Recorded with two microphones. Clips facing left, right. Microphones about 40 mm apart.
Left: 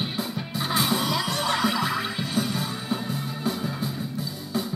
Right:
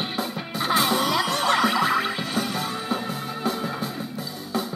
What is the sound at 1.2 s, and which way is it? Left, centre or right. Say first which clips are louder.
Music: right 4 dB; centre.